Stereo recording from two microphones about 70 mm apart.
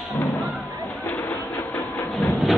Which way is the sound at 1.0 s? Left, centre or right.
Left.